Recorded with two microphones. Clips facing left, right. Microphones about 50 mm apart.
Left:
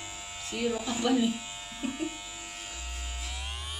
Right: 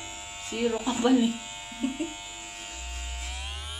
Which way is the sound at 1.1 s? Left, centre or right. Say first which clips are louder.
Right 3 dB; centre.